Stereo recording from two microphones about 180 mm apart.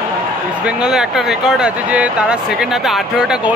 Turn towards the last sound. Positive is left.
turn(degrees=-5)  # may be behind; listen again after turning